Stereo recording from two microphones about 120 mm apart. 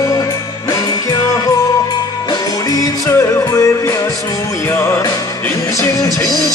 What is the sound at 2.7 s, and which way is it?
Music, 25° left (ahead or behind).